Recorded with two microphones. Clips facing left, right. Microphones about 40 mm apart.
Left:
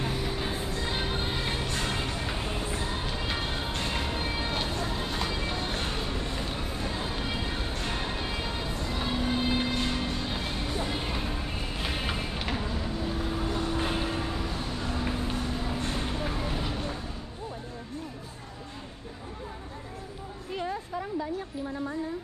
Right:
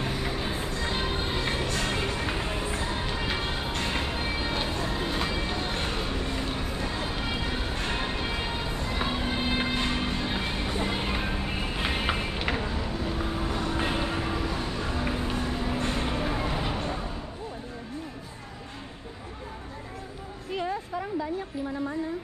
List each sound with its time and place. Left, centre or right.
0.0 s music: centre
7.1 s a sound: centre
7.7 s music: right
12.4 s vehicle: centre